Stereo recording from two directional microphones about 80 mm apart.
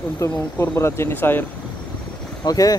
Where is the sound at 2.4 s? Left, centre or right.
Left.